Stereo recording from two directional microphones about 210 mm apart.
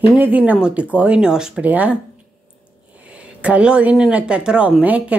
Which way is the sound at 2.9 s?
5° right (ahead or behind).